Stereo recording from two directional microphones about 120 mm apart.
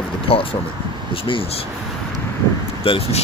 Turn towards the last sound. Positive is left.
turn(degrees=55)  # may be behind; listen again after turning